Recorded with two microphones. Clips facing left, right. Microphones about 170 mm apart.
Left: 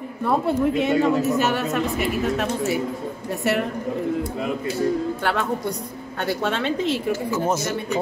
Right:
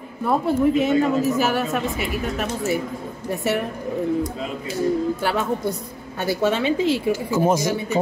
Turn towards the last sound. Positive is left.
turn(degrees=-10)  # may be behind; listen again after turning